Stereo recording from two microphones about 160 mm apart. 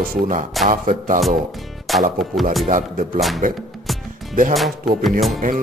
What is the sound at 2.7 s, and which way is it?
Music, 55° right (ahead or behind).